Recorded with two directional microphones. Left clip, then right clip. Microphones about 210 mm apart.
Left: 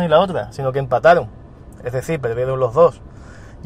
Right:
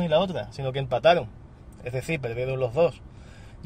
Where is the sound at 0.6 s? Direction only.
20° right (ahead or behind).